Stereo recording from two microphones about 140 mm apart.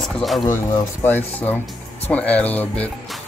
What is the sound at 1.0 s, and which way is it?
Speech, 10° left (ahead or behind).